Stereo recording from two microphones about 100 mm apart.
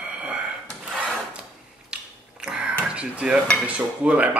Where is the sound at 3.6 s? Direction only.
15° right (ahead or behind).